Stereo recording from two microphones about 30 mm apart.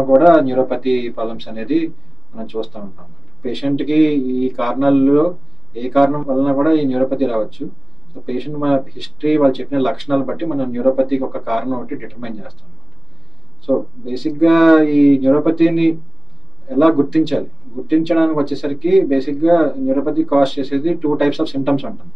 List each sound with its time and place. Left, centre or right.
0.0 s speech: centre
0.3 s speech: centre
6.0 s speech: centre
6.3 s speech: centre
13.7 s speech: centre
20.9 s speech: centre